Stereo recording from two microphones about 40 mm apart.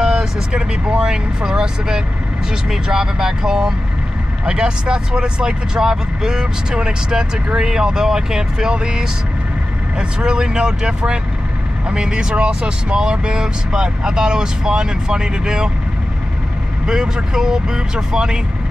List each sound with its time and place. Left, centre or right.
0.0 s speech: centre
16.8 s speech: centre